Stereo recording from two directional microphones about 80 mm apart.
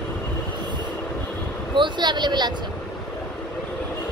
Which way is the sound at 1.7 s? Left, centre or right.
Right.